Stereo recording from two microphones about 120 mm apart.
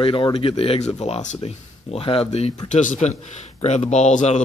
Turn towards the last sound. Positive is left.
turn(degrees=70)  # may be behind; listen again after turning